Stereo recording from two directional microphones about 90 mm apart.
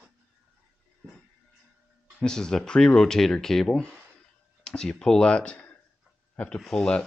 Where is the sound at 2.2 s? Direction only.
5° left (ahead or behind).